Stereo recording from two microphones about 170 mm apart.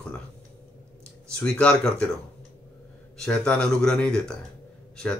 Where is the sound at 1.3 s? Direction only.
5° left (ahead or behind).